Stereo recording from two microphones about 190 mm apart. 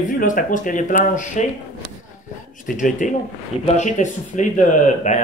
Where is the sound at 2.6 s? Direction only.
45° left (ahead or behind).